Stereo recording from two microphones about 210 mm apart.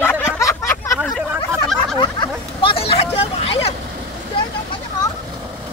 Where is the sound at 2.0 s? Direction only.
20° left (ahead or behind).